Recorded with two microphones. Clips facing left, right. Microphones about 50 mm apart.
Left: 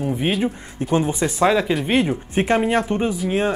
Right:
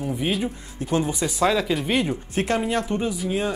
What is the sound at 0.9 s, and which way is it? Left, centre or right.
Speech, left.